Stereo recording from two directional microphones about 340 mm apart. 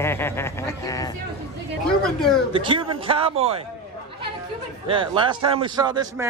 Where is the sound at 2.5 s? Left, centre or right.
Centre.